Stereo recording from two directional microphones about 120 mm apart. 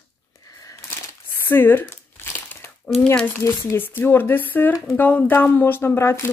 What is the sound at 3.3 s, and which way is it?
Speech, 20° left (ahead or behind).